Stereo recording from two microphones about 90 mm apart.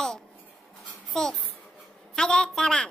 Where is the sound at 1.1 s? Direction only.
5° left (ahead or behind).